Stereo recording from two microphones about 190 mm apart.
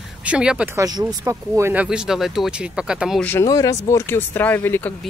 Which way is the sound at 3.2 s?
15° left (ahead or behind).